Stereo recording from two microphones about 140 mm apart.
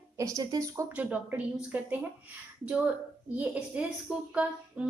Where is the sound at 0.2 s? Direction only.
25° right (ahead or behind).